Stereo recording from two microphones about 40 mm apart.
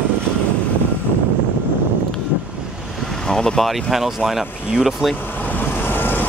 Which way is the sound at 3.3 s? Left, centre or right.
Centre.